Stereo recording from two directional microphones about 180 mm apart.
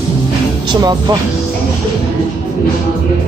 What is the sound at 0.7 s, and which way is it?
Speech, 20° right (ahead or behind).